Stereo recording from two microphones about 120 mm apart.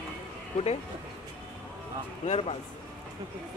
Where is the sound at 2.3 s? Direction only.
55° left (ahead or behind).